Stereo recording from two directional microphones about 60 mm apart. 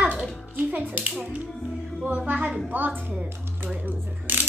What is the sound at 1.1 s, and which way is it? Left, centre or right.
Music, centre.